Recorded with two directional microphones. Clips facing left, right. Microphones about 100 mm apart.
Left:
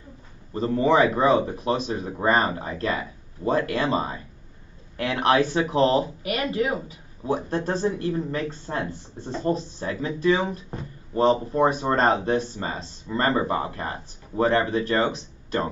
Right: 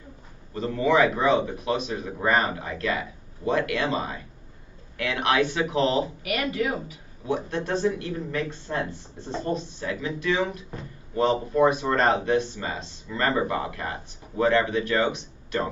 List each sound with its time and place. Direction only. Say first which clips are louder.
0.5 s speech: left 2 dB; 35° left (ahead or behind)